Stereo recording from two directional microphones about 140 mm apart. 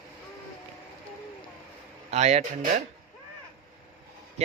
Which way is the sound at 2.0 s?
50° right (ahead or behind).